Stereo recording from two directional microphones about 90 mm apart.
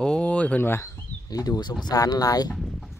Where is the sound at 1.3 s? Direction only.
45° left (ahead or behind).